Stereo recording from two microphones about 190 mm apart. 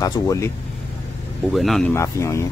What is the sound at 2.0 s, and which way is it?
Speech, 15° left (ahead or behind).